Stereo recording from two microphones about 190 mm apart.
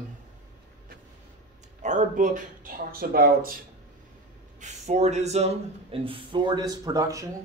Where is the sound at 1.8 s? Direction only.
40° right (ahead or behind).